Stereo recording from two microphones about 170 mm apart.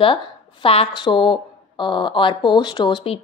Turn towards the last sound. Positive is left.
turn(degrees=25)  # may be behind; listen again after turning